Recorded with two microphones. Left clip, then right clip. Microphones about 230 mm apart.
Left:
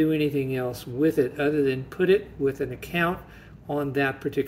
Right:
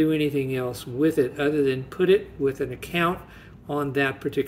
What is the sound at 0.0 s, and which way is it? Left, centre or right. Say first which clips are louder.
Speech: right 1 dB; centre.